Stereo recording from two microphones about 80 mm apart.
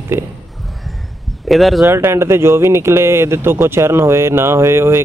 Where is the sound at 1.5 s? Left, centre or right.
Centre.